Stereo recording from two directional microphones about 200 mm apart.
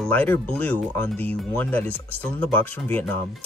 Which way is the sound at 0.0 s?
10° left (ahead or behind).